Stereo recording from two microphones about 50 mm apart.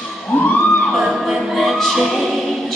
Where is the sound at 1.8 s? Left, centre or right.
Centre.